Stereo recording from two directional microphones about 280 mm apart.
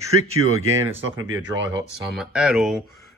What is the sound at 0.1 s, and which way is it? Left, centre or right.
Speech, right.